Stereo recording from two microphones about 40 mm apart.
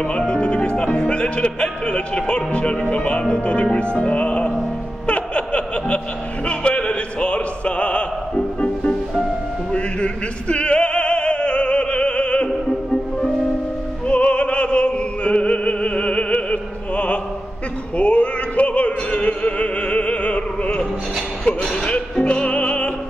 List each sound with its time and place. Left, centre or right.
0.3 s speech: left
3.7 s music: left
5.0 s laughter: left
6.4 s music: left
9.7 s opera: left
14.0 s opera: left
21.5 s a sound: left
22.2 s music: left